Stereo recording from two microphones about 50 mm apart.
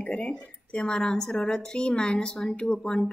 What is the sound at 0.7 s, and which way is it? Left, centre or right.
Speech, centre.